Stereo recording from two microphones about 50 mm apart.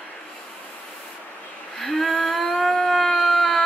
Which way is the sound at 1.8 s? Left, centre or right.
Centre.